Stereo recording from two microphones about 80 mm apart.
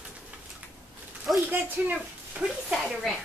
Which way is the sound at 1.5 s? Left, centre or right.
Right.